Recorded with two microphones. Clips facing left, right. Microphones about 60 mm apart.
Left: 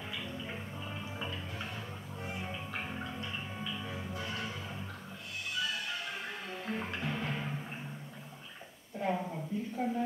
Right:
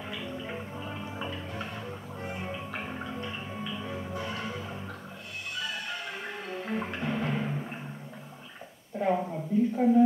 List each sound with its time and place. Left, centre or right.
0.1 s music: centre
5.9 s music: centre
8.9 s a sound: centre